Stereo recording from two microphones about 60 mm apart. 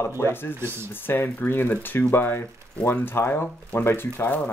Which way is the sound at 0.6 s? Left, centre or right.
Right.